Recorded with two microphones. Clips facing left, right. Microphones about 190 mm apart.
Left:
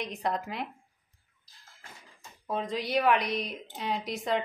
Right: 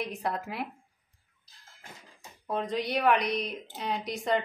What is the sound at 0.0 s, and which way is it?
Speech, 5° right (ahead or behind).